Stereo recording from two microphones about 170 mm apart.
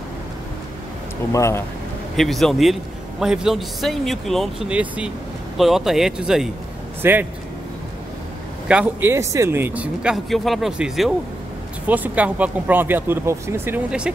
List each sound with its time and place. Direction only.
1.3 s speech: 15° left (ahead or behind)
2.1 s a man's voice: centre (ahead or behind)
8.6 s speech: 10° right (ahead or behind)